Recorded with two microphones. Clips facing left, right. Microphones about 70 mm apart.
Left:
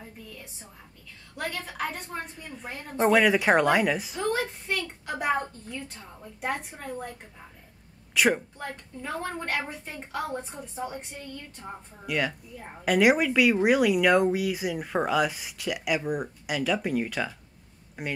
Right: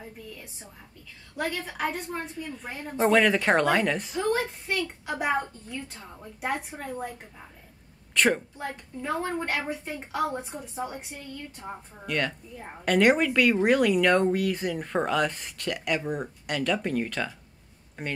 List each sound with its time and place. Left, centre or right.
0.0 s a woman's voice: centre
8.5 s speech: centre
12.1 s speech: centre